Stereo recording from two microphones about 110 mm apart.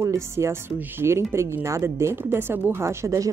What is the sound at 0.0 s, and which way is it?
Speech, 25° right (ahead or behind).